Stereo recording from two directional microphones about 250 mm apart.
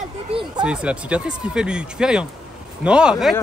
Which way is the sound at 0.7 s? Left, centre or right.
Centre.